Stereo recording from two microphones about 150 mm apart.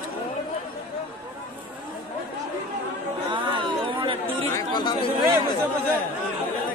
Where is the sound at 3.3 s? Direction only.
35° right (ahead or behind).